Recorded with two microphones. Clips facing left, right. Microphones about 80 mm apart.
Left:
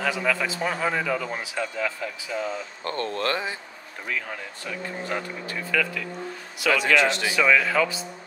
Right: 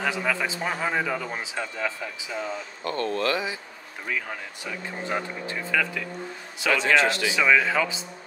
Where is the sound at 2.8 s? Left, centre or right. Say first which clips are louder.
Right 2 dB; left.